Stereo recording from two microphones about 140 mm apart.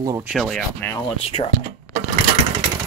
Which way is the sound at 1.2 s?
45° left (ahead or behind).